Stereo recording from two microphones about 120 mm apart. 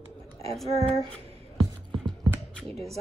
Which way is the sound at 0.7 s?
55° right (ahead or behind).